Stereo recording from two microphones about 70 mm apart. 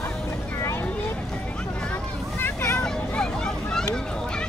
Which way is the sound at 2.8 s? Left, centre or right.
Centre.